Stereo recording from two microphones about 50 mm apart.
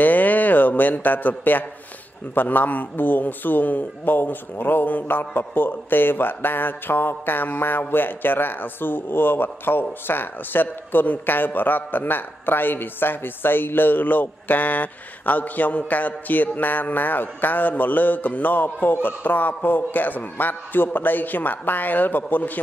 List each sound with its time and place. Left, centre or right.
0.0 s a man's voice: left